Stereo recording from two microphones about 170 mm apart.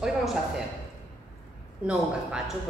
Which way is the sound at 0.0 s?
Centre (ahead or behind).